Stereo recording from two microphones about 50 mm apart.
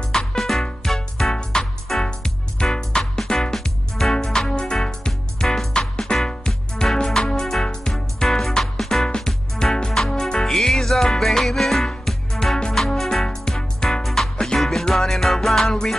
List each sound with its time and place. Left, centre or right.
0.1 s music: centre